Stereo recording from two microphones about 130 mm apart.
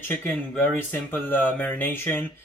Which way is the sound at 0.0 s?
15° left (ahead or behind).